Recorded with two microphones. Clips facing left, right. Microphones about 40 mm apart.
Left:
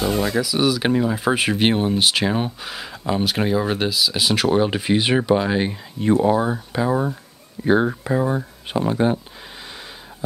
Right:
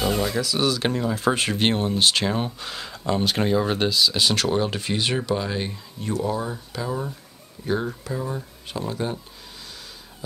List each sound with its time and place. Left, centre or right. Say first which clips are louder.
0.0 s speech: left 3 dB; centre; by 9.2 s left